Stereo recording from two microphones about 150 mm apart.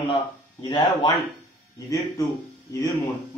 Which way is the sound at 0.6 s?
30° left (ahead or behind).